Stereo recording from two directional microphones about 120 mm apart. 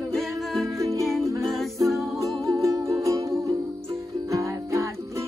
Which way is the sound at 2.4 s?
25° right (ahead or behind).